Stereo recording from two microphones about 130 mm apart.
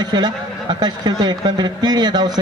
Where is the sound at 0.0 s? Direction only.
30° right (ahead or behind).